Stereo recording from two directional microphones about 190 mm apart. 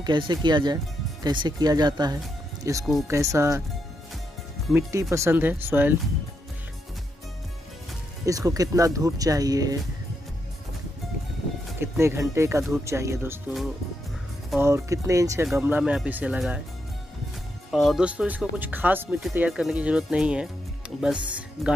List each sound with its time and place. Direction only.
0.0 s speech: 25° right (ahead or behind)
4.7 s speech: 15° right (ahead or behind)
8.3 s speech: 20° right (ahead or behind)
11.8 s speech: 15° right (ahead or behind)
14.6 s speech: 15° right (ahead or behind)
17.6 s speech: centre (ahead or behind)